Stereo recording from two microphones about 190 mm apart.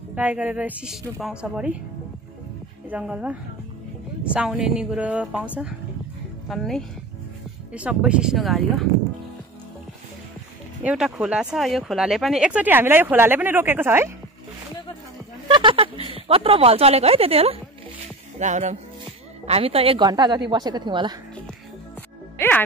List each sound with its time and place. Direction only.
0.1 s speech: 10° right (ahead or behind)
2.9 s speech: 5° right (ahead or behind)
10.8 s speech: 5° right (ahead or behind)
15.4 s a woman's voice: 25° right (ahead or behind)